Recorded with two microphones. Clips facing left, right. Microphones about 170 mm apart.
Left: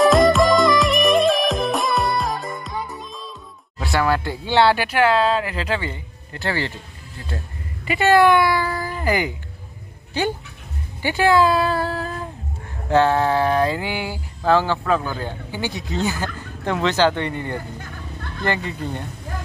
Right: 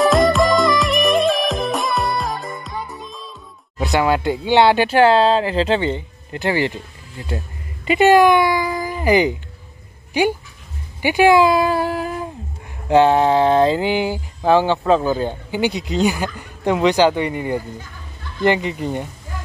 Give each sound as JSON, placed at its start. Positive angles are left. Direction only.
{"t": 0.0, "sound": "music", "side_deg": 0}
{"t": 3.7, "sound": "speech", "side_deg": -20}
{"t": 4.8, "sound": "speech", "side_deg": -30}
{"t": 12.8, "sound": "a sound", "side_deg": -15}
{"t": 16.3, "sound": "speech", "side_deg": -15}
{"t": 17.7, "sound": "music", "side_deg": 60}
{"t": 18.4, "sound": "speech", "side_deg": -20}